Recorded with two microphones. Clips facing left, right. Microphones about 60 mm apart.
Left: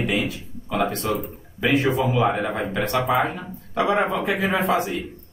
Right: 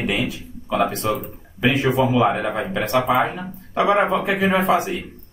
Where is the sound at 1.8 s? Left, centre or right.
Right.